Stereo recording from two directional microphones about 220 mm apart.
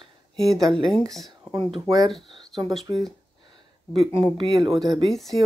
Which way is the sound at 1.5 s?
25° right (ahead or behind).